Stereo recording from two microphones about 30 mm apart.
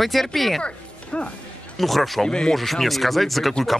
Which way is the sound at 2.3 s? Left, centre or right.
Left.